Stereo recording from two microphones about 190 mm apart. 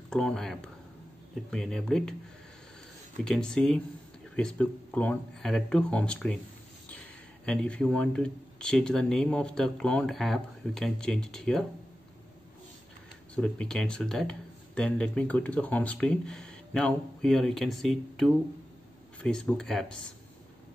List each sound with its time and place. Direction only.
0.1 s speech: 5° left (ahead or behind)
3.3 s speech: 5° left (ahead or behind)
13.3 s speech: 5° left (ahead or behind)